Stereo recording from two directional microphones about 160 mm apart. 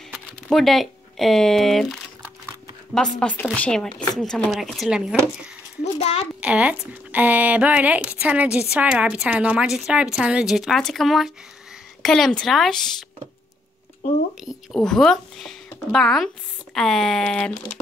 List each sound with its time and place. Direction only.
0.1 s speech: centre (ahead or behind)
5.9 s a child's voice: 45° left (ahead or behind)
6.4 s speech: 10° right (ahead or behind)
14.4 s speech: 5° left (ahead or behind)